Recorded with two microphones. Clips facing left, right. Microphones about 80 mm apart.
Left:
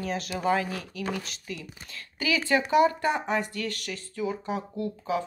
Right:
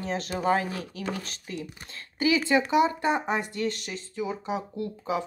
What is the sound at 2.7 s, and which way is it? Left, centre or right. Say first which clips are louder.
Speech: left 1 dB; right.